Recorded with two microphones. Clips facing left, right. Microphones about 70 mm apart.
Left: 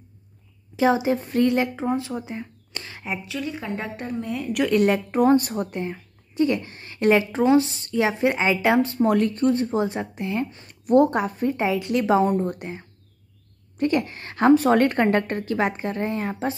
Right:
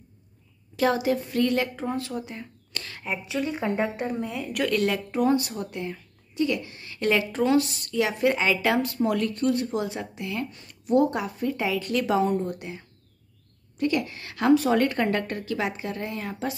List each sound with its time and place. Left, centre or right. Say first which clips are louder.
0.7 s speech: left 3 dB; left
3.3 s speech: right 6 dB; right
3.8 s a woman's voice: right 2 dB; centre
4.6 s speech: left 5 dB; left
5.1 s a woman's voice: left 4 dB; left
9.0 s a woman's voice: left 4 dB; left
10.9 s a woman's voice: left 4 dB; left
12.3 s a woman's voice: left 3 dB; left